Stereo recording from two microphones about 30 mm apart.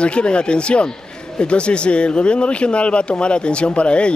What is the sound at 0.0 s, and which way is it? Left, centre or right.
Speech, left.